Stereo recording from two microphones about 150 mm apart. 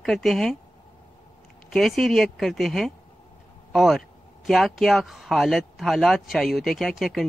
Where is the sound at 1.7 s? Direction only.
Centre (ahead or behind).